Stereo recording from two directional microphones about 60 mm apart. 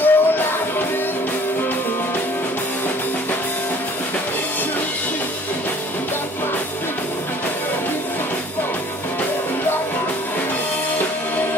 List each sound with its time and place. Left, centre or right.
0.0 s music: left